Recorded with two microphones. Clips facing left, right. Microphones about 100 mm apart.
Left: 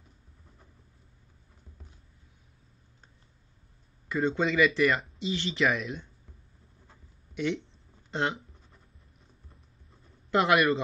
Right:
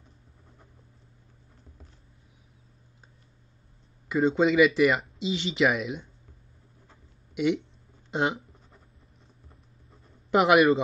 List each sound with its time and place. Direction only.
4.1 s speech: 10° right (ahead or behind)
7.3 s speech: 10° right (ahead or behind)
10.3 s a man's voice: 10° right (ahead or behind)